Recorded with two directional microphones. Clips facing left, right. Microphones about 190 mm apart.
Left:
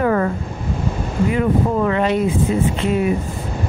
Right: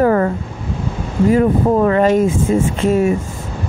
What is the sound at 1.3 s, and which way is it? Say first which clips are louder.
Speech: right 6 dB; 40° right (ahead or behind).